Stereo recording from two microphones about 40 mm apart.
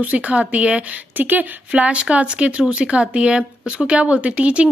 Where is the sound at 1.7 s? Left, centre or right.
Right.